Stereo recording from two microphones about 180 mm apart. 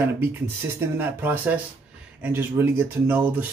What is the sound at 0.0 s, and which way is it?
Speech, 10° right (ahead or behind).